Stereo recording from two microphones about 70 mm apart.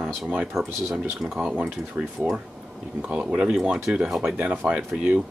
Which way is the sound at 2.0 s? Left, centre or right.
Right.